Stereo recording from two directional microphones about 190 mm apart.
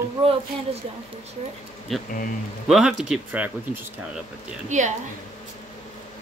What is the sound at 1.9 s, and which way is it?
Speech, centre (ahead or behind).